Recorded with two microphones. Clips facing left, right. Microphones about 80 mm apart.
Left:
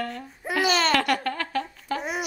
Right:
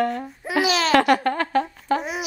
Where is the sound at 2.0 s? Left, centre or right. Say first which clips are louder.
Right 2 dB; centre.